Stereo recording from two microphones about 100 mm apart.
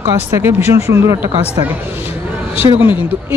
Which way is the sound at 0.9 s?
40° right (ahead or behind).